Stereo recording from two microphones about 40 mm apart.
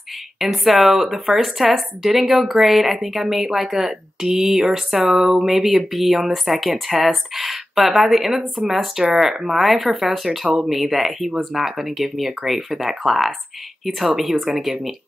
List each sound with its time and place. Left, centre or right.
0.4 s speech: centre
14.5 s speech: centre